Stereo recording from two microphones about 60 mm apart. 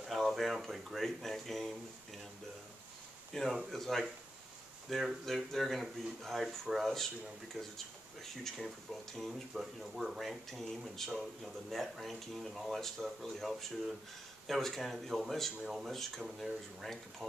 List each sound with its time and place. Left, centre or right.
0.1 s speech: centre
3.3 s speech: centre